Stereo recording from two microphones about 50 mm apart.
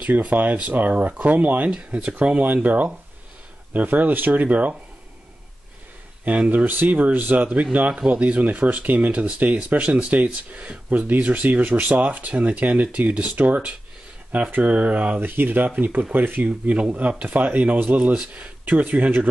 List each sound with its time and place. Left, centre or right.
0.0 s speech: right
6.2 s speech: right
15.1 s speech: right
16.4 s speech: right